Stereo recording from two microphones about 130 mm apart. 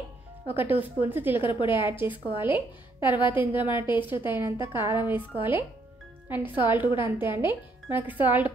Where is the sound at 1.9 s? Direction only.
15° right (ahead or behind).